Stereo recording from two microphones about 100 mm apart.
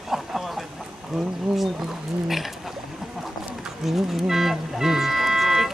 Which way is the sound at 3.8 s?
5° right (ahead or behind).